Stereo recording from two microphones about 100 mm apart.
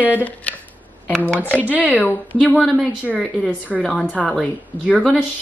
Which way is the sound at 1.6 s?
15° right (ahead or behind).